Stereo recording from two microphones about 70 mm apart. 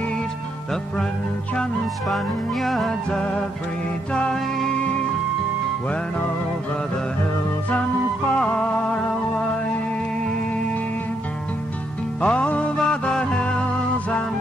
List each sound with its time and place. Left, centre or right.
1.6 s music: centre
4.1 s music: centre
8.3 s music: centre
12.2 s music: centre